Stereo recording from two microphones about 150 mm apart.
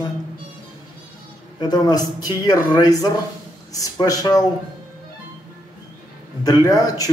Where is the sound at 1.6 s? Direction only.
25° left (ahead or behind).